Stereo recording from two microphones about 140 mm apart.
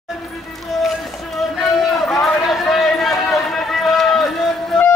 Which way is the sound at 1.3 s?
Centre (ahead or behind).